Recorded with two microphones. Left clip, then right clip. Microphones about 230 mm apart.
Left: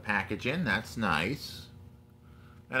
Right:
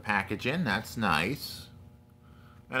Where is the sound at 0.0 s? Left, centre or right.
Centre.